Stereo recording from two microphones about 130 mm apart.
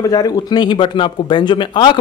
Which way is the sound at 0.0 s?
30° left (ahead or behind).